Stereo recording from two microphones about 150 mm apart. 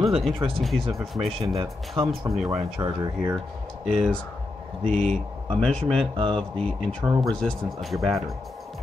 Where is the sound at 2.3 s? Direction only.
Centre (ahead or behind).